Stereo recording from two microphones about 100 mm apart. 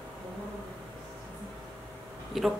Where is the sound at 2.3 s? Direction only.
Centre (ahead or behind).